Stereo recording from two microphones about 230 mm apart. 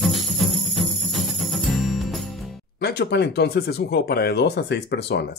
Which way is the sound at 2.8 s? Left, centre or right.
Left.